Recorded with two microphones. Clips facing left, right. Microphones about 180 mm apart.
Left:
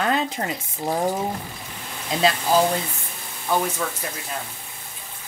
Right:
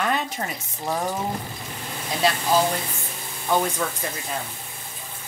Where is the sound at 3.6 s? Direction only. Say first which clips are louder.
Right 1 dB; 5° left (ahead or behind).